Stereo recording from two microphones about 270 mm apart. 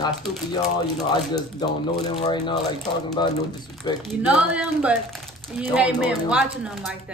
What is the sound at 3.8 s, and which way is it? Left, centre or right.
Speech, centre.